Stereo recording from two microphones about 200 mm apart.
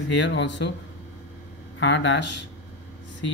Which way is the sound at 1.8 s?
60° left (ahead or behind).